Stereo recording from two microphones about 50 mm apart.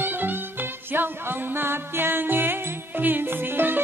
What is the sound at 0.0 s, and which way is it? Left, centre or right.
Music, right.